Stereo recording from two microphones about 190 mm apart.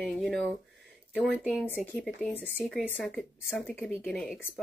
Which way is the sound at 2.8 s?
Centre (ahead or behind).